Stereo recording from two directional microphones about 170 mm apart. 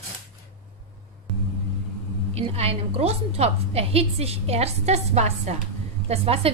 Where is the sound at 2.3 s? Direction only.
35° right (ahead or behind).